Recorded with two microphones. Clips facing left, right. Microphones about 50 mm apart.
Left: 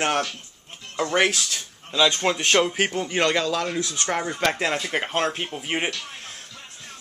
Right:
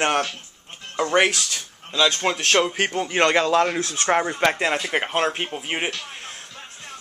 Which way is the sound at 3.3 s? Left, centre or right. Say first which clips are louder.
Right 5 dB; right.